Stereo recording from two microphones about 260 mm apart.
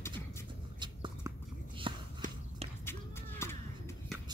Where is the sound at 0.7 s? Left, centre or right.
Centre.